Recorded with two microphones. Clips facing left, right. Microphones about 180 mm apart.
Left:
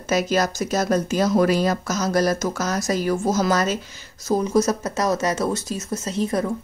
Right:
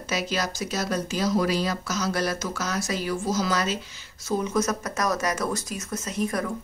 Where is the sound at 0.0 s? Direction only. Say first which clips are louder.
Left 7 dB; 45° left (ahead or behind).